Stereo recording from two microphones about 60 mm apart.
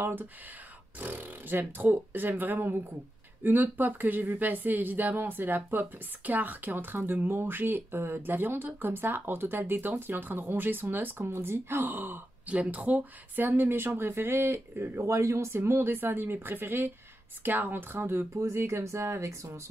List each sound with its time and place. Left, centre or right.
0.0 s speech: right